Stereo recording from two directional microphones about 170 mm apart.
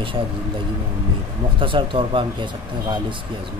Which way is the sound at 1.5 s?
30° right (ahead or behind).